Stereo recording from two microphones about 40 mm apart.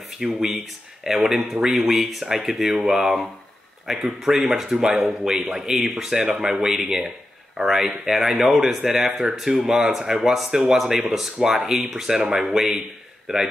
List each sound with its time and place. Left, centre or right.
0.2 s speech: centre
8.8 s speech: centre
9.1 s speech: centre
12.4 s speech: centre